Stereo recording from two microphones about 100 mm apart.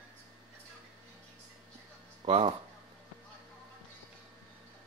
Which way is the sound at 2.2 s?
65° right (ahead or behind).